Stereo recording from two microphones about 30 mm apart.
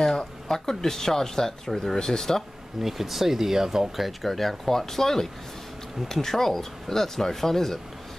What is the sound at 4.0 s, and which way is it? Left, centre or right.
Speech, centre.